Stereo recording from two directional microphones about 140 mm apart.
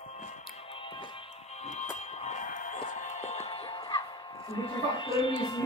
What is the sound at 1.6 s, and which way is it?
Music, 55° left (ahead or behind).